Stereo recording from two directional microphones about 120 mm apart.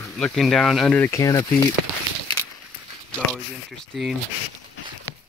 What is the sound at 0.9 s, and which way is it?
Speech, 20° left (ahead or behind).